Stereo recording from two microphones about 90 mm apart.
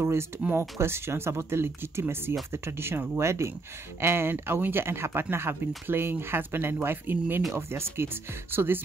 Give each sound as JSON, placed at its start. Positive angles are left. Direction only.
{"t": 0.0, "sound": "speech", "side_deg": -30}